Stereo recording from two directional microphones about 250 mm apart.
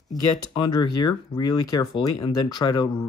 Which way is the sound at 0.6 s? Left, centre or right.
Centre.